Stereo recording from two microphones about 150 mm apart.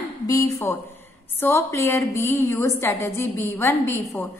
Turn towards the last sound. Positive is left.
turn(degrees=20)  # may be behind; listen again after turning